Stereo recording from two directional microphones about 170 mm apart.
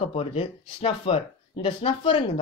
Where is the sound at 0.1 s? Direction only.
35° left (ahead or behind).